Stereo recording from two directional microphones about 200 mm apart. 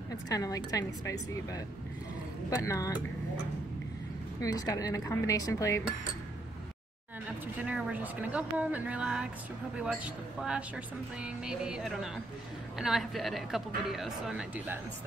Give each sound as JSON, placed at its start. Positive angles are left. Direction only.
{"t": 0.1, "sound": "a woman's voice", "side_deg": 15}
{"t": 4.4, "sound": "a woman's voice", "side_deg": 15}
{"t": 7.6, "sound": "a woman's voice", "side_deg": -5}